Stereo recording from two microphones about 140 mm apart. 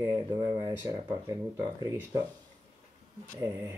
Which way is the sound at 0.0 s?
20° right (ahead or behind).